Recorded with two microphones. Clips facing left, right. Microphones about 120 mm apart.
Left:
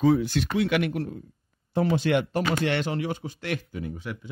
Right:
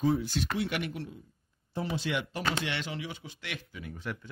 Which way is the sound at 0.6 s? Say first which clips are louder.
Left 11 dB; 90° left.